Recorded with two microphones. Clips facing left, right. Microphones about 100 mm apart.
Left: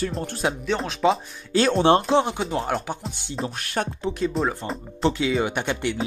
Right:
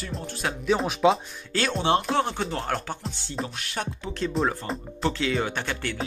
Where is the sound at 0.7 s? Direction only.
5° right (ahead or behind).